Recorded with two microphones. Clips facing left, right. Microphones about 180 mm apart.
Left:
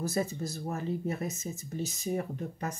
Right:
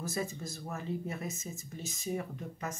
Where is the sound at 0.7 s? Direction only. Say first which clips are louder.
Left 4 dB; 40° left (ahead or behind).